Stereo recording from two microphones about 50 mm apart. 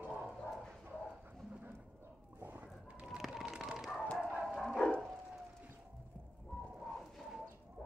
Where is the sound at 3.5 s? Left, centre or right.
Centre.